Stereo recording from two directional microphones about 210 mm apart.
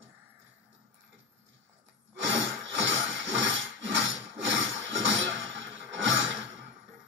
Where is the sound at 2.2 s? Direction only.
60° right (ahead or behind).